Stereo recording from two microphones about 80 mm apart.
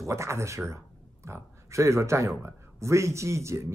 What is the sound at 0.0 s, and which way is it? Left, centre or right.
Speech, right.